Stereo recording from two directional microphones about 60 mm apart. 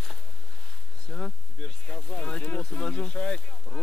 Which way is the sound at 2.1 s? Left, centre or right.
Left.